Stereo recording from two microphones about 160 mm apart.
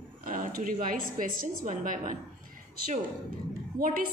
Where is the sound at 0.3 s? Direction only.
60° right (ahead or behind).